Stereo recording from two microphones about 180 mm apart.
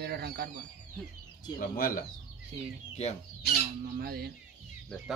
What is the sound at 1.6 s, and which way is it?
Speech, 55° left (ahead or behind).